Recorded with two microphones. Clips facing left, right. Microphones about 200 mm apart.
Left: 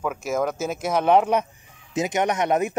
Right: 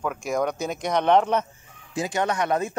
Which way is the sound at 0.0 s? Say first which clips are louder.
Left 1 dB; 5° left (ahead or behind).